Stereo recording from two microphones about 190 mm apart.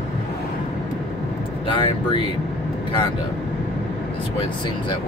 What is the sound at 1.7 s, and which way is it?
Speech, 25° left (ahead or behind).